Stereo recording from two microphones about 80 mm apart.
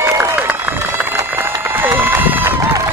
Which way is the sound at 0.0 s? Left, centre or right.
Right.